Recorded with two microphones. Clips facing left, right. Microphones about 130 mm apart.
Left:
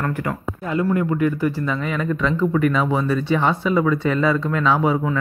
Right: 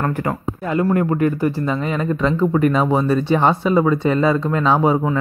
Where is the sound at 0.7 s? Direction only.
55° right (ahead or behind).